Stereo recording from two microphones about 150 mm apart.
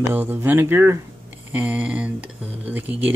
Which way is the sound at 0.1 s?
15° right (ahead or behind).